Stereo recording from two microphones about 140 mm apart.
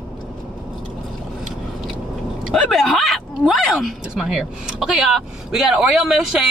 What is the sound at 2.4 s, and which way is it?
Speech, centre (ahead or behind).